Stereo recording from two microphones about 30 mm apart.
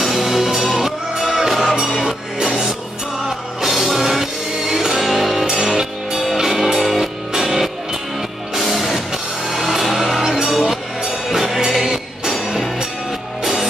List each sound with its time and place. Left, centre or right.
0.0 s music: centre
2.0 s music: right
3.3 s music: centre
5.6 s music: right; by 7.0 s centre
8.5 s music: centre
10.6 s music: right
11.2 s music: centre